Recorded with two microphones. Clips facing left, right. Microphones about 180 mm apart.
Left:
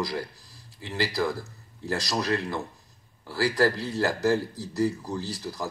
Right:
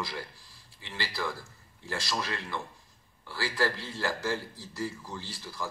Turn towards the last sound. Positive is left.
turn(degrees=40)  # may be behind; listen again after turning